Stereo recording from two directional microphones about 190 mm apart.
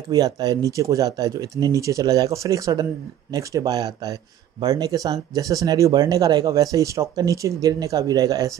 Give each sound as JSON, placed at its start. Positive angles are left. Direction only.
{"t": 0.1, "sound": "speech", "side_deg": -20}